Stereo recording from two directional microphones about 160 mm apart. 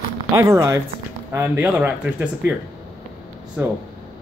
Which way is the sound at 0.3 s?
20° right (ahead or behind).